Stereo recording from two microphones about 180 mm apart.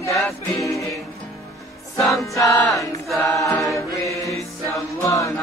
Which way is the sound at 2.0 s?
Centre (ahead or behind).